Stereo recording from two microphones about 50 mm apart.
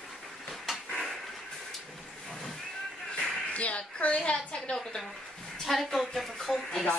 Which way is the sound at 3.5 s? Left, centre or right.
Left.